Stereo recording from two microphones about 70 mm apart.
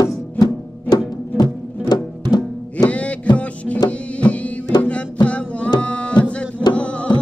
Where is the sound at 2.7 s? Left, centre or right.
Centre.